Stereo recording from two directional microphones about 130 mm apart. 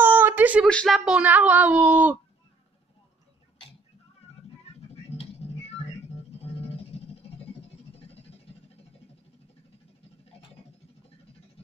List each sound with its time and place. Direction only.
0.0 s a sound: 15° right (ahead or behind)
0.7 s speech: 5° left (ahead or behind); by 2.1 s 10° right (ahead or behind)
5.1 s music: 45° left (ahead or behind)